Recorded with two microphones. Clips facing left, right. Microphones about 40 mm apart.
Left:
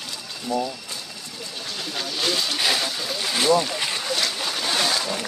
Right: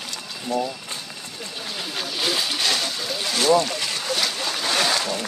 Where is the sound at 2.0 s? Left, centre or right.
Centre.